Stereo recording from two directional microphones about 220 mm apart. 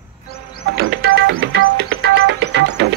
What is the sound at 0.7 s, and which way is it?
Music, 50° right (ahead or behind).